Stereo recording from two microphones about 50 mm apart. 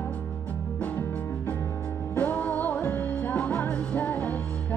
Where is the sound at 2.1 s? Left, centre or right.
Left.